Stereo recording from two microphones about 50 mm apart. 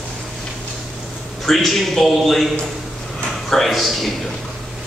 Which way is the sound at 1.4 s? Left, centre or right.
Centre.